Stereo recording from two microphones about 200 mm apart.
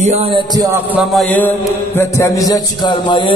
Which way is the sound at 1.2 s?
5° left (ahead or behind).